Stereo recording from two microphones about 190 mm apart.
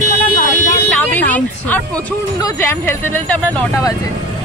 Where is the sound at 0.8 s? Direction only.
10° left (ahead or behind).